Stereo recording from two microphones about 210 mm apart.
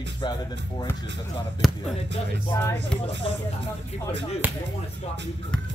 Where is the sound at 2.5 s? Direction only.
15° left (ahead or behind).